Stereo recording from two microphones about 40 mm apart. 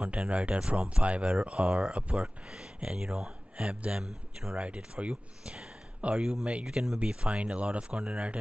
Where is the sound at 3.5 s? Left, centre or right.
Right.